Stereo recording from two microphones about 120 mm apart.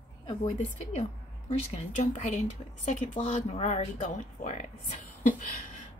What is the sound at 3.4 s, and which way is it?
A woman's voice, 70° left (ahead or behind).